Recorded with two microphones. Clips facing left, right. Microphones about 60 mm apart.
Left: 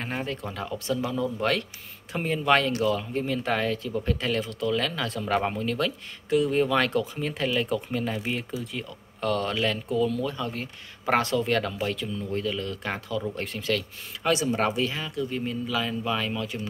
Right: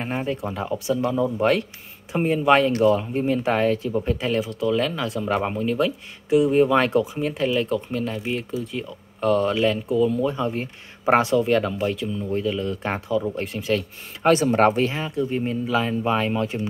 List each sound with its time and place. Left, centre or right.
0.0 s speech: centre
8.7 s speech: centre
10.1 s speech: right
14.2 s speech: right